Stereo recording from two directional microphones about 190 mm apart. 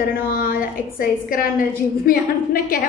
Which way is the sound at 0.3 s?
50° left (ahead or behind).